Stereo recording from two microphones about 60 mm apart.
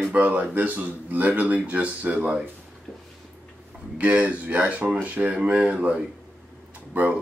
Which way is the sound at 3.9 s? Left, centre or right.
Right.